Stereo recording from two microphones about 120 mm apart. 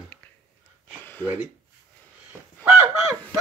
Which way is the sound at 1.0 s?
15° left (ahead or behind).